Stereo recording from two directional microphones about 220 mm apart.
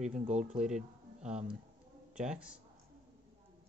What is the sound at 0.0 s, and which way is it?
Speech, 30° right (ahead or behind).